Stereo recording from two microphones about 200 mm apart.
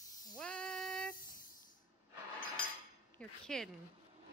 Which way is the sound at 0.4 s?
5° left (ahead or behind).